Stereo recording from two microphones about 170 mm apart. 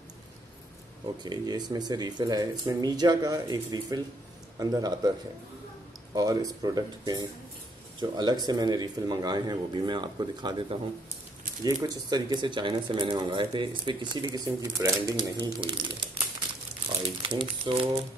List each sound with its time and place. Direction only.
1.2 s speech: 25° right (ahead or behind)
6.1 s speech: 20° right (ahead or behind)
17.2 s speech: 30° right (ahead or behind)